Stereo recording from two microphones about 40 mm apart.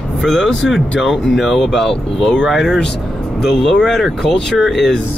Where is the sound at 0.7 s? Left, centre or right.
Centre.